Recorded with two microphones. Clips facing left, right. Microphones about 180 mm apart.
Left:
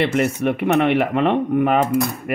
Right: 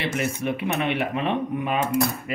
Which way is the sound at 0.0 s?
65° left (ahead or behind).